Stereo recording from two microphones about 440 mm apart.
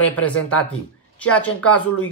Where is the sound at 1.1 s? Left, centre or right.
Centre.